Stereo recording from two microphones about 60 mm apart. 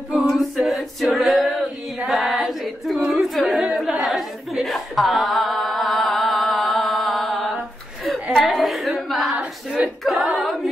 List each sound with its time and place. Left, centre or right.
0.1 s a capella: centre
2.0 s female singing: centre
3.1 s singing: centre
3.7 s a sound: centre
10.0 s singing: centre